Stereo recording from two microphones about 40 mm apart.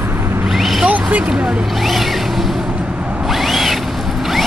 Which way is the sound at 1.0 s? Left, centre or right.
Right.